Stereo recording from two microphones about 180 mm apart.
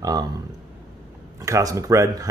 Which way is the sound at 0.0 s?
20° right (ahead or behind).